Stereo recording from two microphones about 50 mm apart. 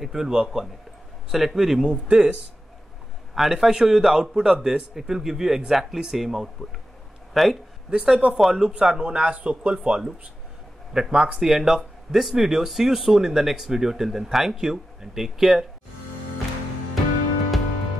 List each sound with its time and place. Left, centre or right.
0.0 s speech: centre
3.3 s a man's voice: centre
7.9 s speech: centre